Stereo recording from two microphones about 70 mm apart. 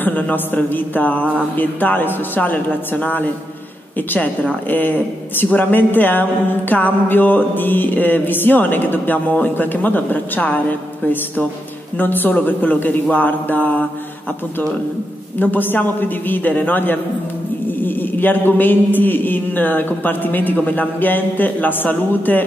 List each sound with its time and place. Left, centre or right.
0.0 s music: left
15.3 s music: left